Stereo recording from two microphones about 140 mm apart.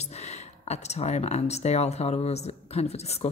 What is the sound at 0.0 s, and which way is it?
Speech, 50° left (ahead or behind).